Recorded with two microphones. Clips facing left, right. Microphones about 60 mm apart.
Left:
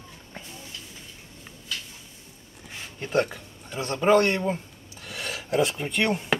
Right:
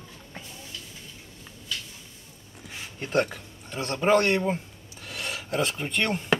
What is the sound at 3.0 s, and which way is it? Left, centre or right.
Speech, centre.